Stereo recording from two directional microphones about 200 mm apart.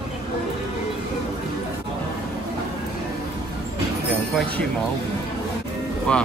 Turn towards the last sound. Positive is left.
turn(degrees=5)  # may be behind; listen again after turning